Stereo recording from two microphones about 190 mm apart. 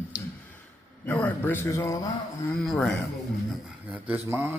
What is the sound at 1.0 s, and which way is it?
Speech, 10° left (ahead or behind).